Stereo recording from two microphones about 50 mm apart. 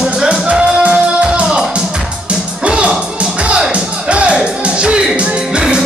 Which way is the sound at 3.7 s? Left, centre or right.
Right.